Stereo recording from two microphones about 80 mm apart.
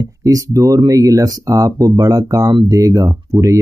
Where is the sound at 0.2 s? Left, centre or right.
Right.